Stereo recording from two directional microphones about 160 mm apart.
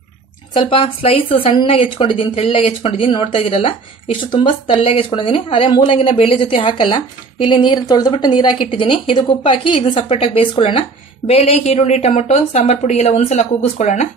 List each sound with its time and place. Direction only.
0.6 s a woman's voice: 35° left (ahead or behind)